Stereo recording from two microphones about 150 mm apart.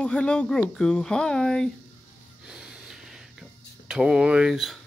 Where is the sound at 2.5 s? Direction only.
5° right (ahead or behind).